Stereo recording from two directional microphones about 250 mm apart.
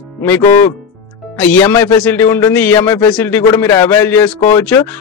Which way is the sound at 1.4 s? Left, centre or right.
Centre.